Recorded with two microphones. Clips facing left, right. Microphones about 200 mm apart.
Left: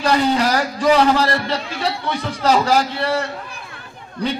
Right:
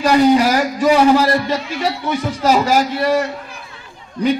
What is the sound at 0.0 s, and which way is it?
A man's voice, 10° right (ahead or behind).